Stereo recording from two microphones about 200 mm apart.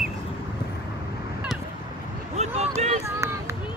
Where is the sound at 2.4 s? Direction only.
35° right (ahead or behind).